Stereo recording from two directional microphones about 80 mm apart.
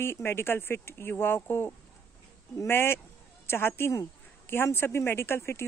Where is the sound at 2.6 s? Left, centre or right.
Left.